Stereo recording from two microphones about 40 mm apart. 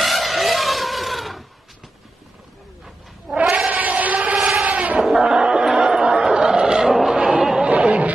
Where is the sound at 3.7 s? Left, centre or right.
Right.